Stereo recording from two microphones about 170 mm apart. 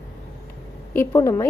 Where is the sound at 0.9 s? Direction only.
15° left (ahead or behind).